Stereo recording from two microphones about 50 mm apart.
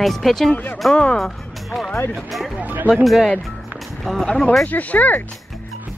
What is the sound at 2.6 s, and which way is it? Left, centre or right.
Speech, right.